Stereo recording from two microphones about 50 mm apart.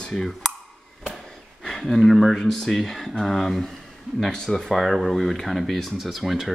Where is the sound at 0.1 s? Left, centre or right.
Centre.